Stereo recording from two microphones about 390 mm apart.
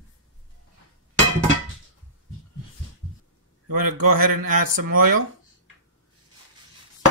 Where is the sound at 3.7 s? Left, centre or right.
Right.